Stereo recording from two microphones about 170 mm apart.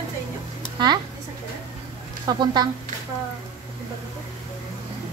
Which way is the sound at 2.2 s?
25° right (ahead or behind).